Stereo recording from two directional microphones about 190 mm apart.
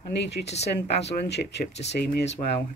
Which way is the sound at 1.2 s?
65° left (ahead or behind).